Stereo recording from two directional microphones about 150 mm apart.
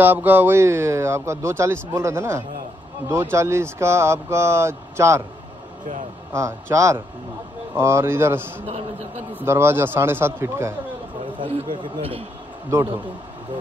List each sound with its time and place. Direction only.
0.0 s speech: 10° right (ahead or behind)
6.3 s a man's voice: 20° right (ahead or behind)
8.6 s speech: 50° right (ahead or behind)
9.4 s speech: 15° right (ahead or behind)
11.8 s a man's voice: 40° right (ahead or behind)
12.7 s a man's voice: 20° right (ahead or behind)